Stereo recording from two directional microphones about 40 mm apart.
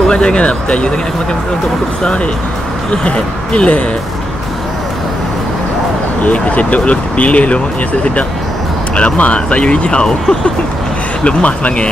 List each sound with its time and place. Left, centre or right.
0.0 s speech: left
2.9 s speech: left
6.2 s speech: left
11.2 s speech: left